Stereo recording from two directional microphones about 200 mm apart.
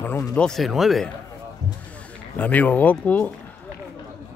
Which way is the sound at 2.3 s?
10° left (ahead or behind).